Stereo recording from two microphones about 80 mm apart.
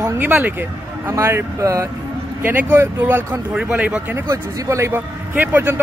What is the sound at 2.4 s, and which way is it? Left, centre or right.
Speech, right.